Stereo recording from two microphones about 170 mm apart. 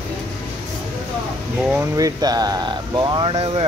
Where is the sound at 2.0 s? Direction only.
20° right (ahead or behind).